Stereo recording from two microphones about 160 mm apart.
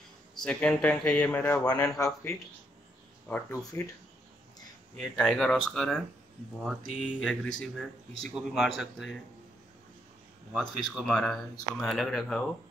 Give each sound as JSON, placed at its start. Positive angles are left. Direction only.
{"t": 0.3, "sound": "speech", "side_deg": 5}
{"t": 3.3, "sound": "speech", "side_deg": 15}
{"t": 4.9, "sound": "speech", "side_deg": 5}
{"t": 10.5, "sound": "speech", "side_deg": 5}